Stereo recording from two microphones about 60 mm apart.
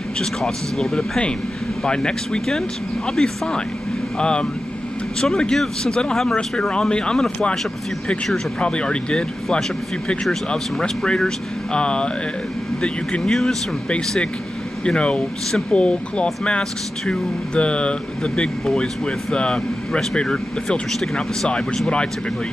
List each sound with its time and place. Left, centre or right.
0.2 s speech: centre
8.5 s speech: centre
14.9 s speech: centre